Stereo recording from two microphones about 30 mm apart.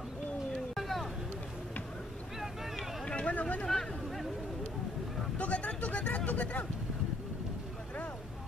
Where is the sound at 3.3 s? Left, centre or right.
Left.